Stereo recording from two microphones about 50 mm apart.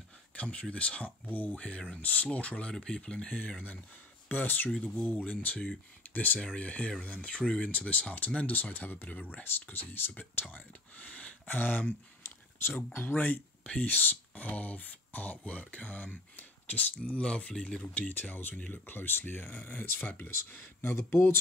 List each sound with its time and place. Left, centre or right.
0.3 s speech: left
1.3 s speech: left
2.7 s speech: centre
4.3 s speech: left
10.5 s speech: left
11.4 s speech: left
17.9 s speech: left